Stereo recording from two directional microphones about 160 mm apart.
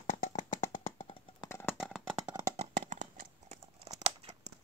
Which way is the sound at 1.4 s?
15° left (ahead or behind).